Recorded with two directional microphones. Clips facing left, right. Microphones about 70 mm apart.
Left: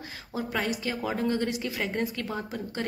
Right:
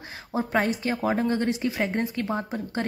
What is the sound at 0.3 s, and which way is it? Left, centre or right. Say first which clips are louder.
A woman's voice: right 5 dB; right.